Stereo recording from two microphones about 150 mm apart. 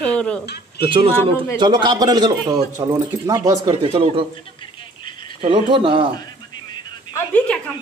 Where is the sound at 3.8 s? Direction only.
40° right (ahead or behind).